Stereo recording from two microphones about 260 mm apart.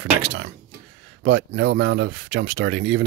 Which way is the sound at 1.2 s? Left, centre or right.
Right.